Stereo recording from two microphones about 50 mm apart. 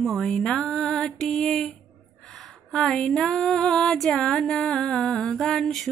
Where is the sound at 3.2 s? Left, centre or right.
Centre.